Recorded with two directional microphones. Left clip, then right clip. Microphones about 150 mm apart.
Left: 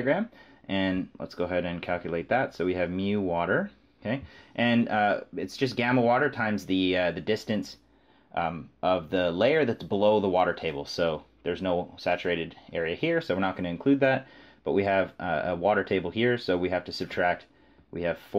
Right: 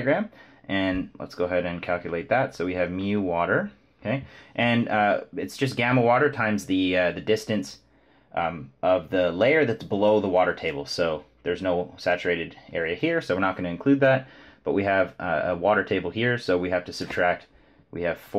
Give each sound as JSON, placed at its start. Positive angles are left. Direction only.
{"t": 0.7, "sound": "speech", "side_deg": 35}